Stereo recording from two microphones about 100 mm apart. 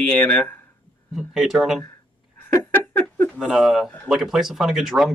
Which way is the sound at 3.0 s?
15° left (ahead or behind).